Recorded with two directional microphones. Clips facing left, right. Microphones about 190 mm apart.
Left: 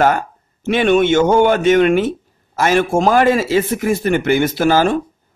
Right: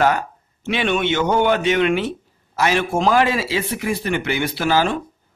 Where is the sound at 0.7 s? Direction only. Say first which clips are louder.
Left 7 dB; 45° left (ahead or behind).